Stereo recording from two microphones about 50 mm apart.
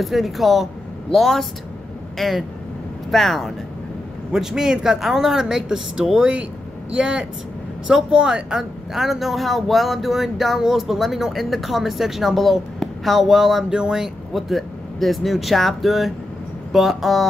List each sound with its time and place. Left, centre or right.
0.0 s a woman's voice: centre
4.3 s a woman's voice: centre
13.7 s speech: centre
14.0 s a woman's voice: centre